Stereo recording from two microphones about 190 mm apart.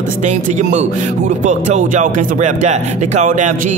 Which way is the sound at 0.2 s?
40° right (ahead or behind).